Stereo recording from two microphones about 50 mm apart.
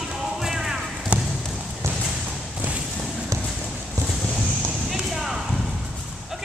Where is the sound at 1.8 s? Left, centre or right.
Right.